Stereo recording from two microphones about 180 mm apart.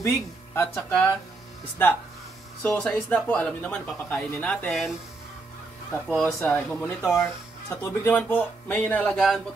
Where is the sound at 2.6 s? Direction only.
10° left (ahead or behind).